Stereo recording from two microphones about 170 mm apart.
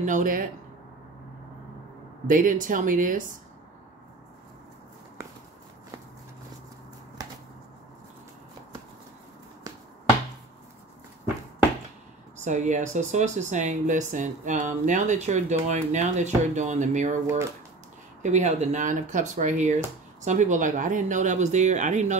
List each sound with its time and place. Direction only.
0.0 s speech: 50° right (ahead or behind)
2.2 s speech: 50° right (ahead or behind)
12.4 s speech: 45° right (ahead or behind)
18.2 s speech: 45° right (ahead or behind)